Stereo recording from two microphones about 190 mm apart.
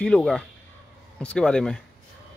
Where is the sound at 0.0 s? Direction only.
5° left (ahead or behind).